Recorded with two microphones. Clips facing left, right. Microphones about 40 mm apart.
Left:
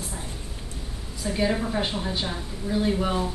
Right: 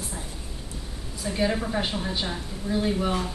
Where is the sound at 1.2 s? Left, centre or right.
Centre.